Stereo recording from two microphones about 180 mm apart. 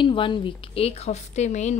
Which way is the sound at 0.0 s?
30° left (ahead or behind).